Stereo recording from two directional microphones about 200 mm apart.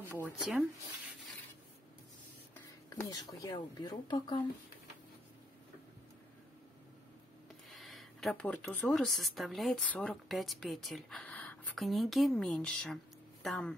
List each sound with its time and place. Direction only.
0.0 s speech: 10° right (ahead or behind)
2.5 s speech: 15° left (ahead or behind)
7.7 s speech: centre (ahead or behind)